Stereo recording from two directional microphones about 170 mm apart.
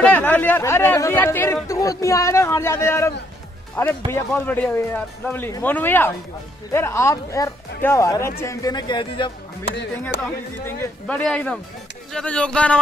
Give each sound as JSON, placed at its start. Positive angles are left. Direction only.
{"t": 0.0, "sound": "speech", "side_deg": 10}
{"t": 10.6, "sound": "speech", "side_deg": 5}